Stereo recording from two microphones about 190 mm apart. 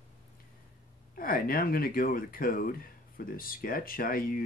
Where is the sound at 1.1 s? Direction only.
50° left (ahead or behind).